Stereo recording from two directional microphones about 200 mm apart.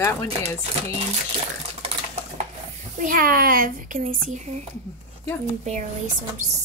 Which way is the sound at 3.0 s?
45° right (ahead or behind).